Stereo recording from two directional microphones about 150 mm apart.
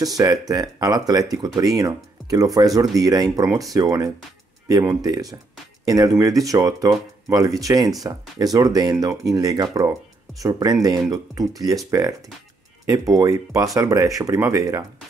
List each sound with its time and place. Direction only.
0.0 s speech: 25° right (ahead or behind)